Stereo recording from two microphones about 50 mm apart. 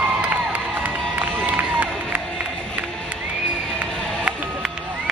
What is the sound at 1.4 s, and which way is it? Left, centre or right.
Crowd, right.